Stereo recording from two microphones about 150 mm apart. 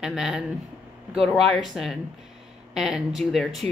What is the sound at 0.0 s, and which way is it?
Speech, centre (ahead or behind).